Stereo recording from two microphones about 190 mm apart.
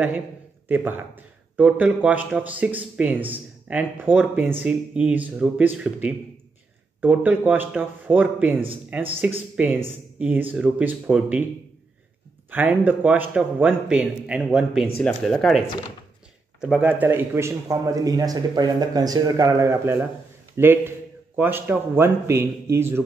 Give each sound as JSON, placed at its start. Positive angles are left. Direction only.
{"t": 0.7, "sound": "speech", "side_deg": -10}
{"t": 12.4, "sound": "speech", "side_deg": -10}
{"t": 16.6, "sound": "a man's voice", "side_deg": -10}